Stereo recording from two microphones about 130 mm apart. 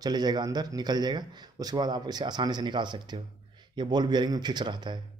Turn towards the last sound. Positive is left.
turn(degrees=-35)  # may be behind; listen again after turning